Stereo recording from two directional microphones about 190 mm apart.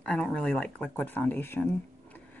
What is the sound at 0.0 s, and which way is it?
A woman's voice, 5° left (ahead or behind).